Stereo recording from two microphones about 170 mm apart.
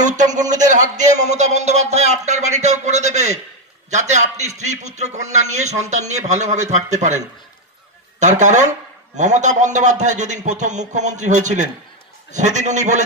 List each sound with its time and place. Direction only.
0.0 s a man's voice: 45° right (ahead or behind)